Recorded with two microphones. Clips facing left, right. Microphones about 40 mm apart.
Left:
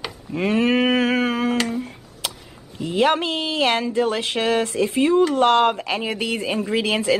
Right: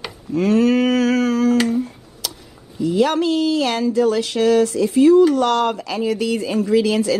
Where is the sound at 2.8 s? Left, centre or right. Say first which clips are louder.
Right 2 dB; left.